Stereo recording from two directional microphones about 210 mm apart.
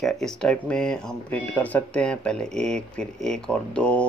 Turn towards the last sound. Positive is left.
turn(degrees=5)  # may be behind; listen again after turning